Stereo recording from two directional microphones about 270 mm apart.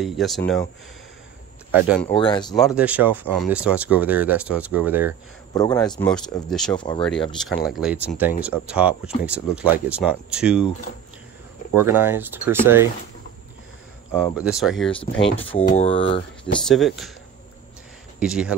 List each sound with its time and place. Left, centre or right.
0.0 s speech: centre
1.7 s speech: centre
2.1 s speech: centre
2.5 s speech: centre
5.5 s a man's voice: centre
5.8 s speech: centre
6.8 s speech: centre
7.6 s speech: centre
11.7 s speech: centre
14.3 s speech: centre
15.0 s speech: centre
16.6 s speech: centre
18.2 s speech: centre